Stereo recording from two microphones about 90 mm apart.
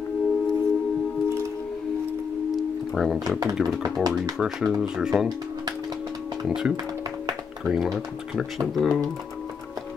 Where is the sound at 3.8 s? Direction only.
45° right (ahead or behind).